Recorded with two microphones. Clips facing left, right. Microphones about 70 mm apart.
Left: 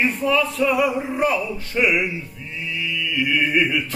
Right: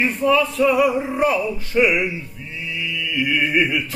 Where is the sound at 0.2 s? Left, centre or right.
Centre.